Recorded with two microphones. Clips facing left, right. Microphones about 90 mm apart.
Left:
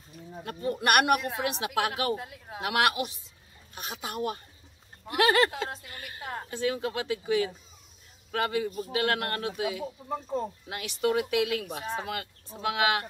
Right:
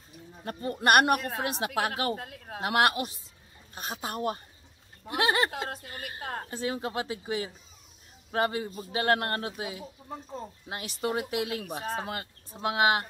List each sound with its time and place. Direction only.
0.5 s speech: 35° right (ahead or behind)
2.2 s speech: 45° right (ahead or behind)
2.6 s speech: 35° right (ahead or behind)
5.0 s speech: 20° right (ahead or behind)